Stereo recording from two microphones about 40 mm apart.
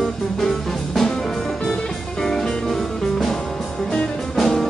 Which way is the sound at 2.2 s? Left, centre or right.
Centre.